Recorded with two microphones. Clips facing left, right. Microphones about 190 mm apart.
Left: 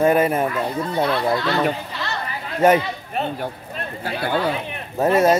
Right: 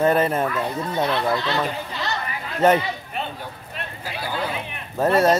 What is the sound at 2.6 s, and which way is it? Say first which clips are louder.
Speech: left 2 dB; 10° left (ahead or behind).